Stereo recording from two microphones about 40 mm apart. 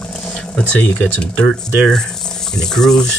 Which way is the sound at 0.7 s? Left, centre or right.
Left.